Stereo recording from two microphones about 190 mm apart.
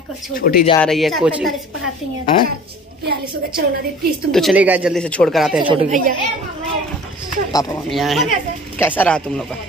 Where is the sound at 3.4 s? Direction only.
55° right (ahead or behind).